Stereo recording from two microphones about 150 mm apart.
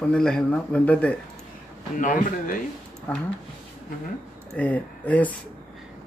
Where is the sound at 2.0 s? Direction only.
65° left (ahead or behind).